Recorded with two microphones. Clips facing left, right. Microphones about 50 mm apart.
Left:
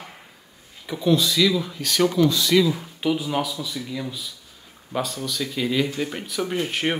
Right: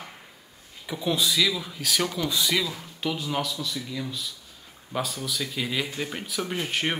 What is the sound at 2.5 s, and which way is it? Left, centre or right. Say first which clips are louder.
Speech: left 9 dB; centre.